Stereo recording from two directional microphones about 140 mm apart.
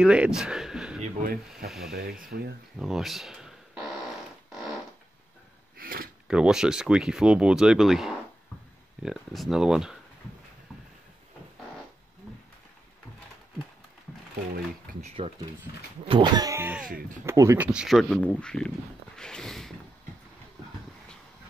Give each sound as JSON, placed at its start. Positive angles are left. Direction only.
{"t": 0.0, "sound": "speech", "side_deg": -5}
{"t": 2.0, "sound": "speech", "side_deg": -90}
{"t": 2.8, "sound": "a sound", "side_deg": 0}
{"t": 5.8, "sound": "a sound", "side_deg": -90}
{"t": 6.2, "sound": "speech", "side_deg": -5}
{"t": 15.0, "sound": "speech", "side_deg": -50}
{"t": 15.7, "sound": "speech", "side_deg": 90}
{"t": 16.1, "sound": "speech", "side_deg": -30}
{"t": 16.8, "sound": "speech", "side_deg": -80}
{"t": 17.3, "sound": "speech", "side_deg": -20}
{"t": 17.6, "sound": "speech", "side_deg": -5}
{"t": 19.1, "sound": "a sound", "side_deg": 5}